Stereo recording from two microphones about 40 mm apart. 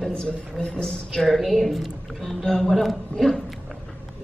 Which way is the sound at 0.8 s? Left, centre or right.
Centre.